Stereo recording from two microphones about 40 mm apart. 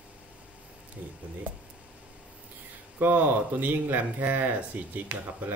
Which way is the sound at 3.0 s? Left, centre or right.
Right.